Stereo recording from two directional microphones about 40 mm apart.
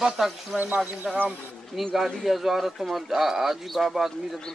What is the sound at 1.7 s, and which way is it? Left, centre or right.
Speech, centre.